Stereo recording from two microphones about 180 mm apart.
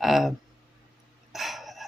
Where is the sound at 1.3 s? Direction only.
Centre (ahead or behind).